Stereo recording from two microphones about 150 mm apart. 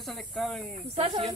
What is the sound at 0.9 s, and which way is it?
Speech, 40° right (ahead or behind).